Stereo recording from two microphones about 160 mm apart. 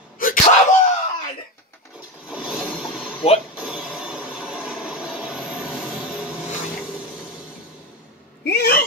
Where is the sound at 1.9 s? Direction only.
5° right (ahead or behind).